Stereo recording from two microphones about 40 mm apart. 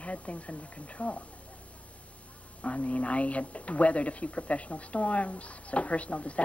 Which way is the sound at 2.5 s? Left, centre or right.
Left.